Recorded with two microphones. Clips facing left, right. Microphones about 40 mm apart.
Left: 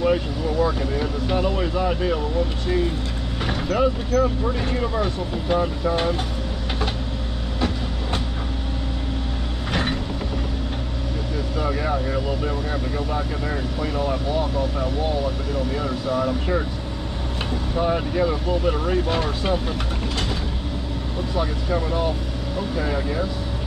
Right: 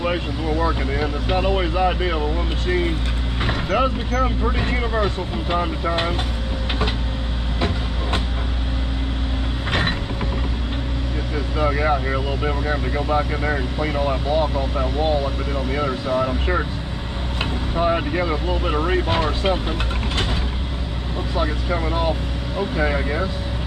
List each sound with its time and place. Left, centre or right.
0.0 s speech: right
3.4 s speech: right
9.7 s mechanisms: right
11.6 s speech: right
17.7 s speech: right
21.4 s speech: right